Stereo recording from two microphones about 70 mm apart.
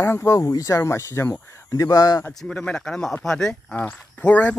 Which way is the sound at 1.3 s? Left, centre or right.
Left.